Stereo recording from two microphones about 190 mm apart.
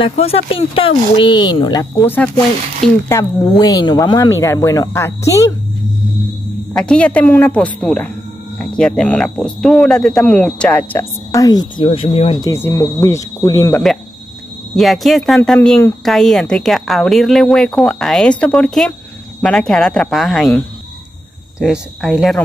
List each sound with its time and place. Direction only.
0.2 s speech: 30° left (ahead or behind)
2.0 s speech: 10° left (ahead or behind)
6.7 s speech: 5° left (ahead or behind)
11.8 s speech: 30° left (ahead or behind)
12.4 s speech: 15° left (ahead or behind)
14.8 s speech: centre (ahead or behind)